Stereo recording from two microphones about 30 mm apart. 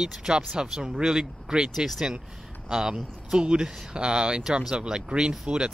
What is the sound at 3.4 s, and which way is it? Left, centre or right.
A man's voice, right.